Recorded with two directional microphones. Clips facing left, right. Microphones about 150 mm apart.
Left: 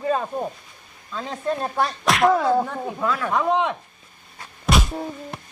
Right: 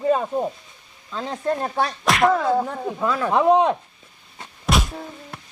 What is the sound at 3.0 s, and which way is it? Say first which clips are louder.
Speech: right 5 dB; 30° right (ahead or behind).